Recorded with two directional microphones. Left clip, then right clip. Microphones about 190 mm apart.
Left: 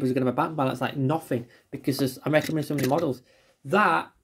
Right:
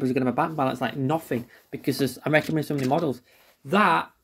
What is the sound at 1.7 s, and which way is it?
Speech, 15° right (ahead or behind).